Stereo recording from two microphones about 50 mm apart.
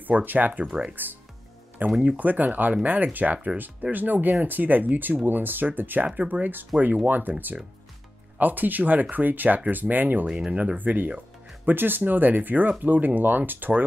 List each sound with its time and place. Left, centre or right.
0.0 s speech: right
6.0 s speech: right
10.2 s speech: centre
11.6 s speech: right